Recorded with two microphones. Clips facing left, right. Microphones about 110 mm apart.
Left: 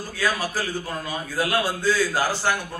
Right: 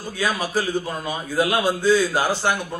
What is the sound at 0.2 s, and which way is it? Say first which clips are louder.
A man's voice: right 2 dB; 20° right (ahead or behind).